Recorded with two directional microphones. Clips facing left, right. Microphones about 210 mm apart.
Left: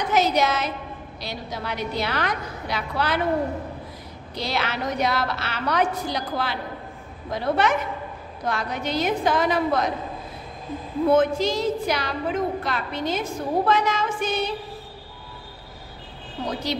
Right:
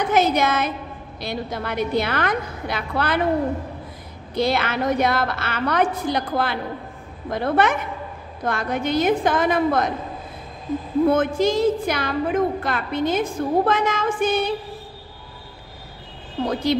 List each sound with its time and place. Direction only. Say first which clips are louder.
0.1 s a woman's voice: right 1 dB; 55° right (ahead or behind)
4.4 s a woman's voice: right 6 dB; 55° right (ahead or behind)
11.1 s a woman's voice: left 1 dB; 50° right (ahead or behind)